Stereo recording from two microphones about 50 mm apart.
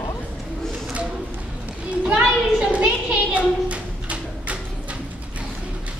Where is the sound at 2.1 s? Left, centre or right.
Right.